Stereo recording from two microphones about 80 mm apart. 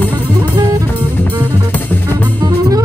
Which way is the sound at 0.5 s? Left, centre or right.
Right.